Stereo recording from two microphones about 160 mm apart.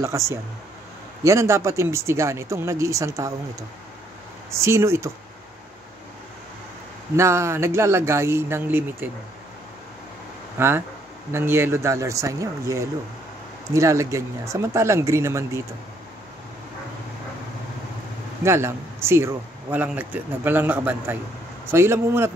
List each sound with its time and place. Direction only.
0.0 s speech: 20° right (ahead or behind)
4.5 s speech: 15° right (ahead or behind)
7.2 s speech: 15° right (ahead or behind)
10.6 s speech: 15° right (ahead or behind)
18.4 s speech: 15° right (ahead or behind)